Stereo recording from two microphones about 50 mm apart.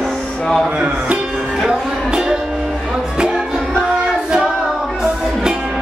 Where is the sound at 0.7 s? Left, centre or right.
Right.